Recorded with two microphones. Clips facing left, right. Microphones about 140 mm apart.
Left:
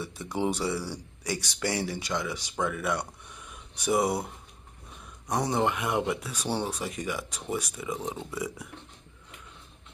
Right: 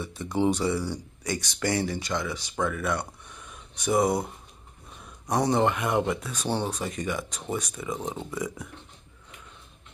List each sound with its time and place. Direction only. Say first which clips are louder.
0.0 s speech: right 4 dB; 10° left (ahead or behind)
5.3 s speech: right 3 dB; centre (ahead or behind)
8.0 s speech: right 1 dB; 20° right (ahead or behind)
8.3 s speech: right 2 dB; 10° left (ahead or behind)